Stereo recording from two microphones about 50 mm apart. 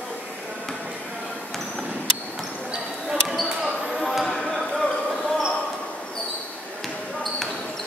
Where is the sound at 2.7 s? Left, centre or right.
Centre.